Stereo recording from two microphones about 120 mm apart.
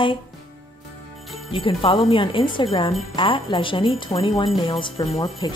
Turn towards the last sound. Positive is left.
turn(degrees=40)  # may be behind; listen again after turning